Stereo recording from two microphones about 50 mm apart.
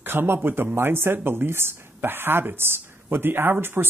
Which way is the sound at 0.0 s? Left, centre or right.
Right.